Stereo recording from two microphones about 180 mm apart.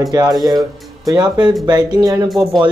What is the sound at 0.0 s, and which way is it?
Speech, 20° right (ahead or behind).